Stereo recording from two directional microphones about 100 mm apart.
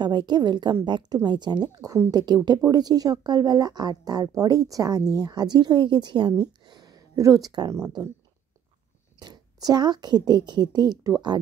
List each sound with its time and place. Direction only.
0.0 s a woman's voice: 45° right (ahead or behind)
6.6 s a sound: 45° right (ahead or behind)
9.2 s a woman's voice: 40° right (ahead or behind)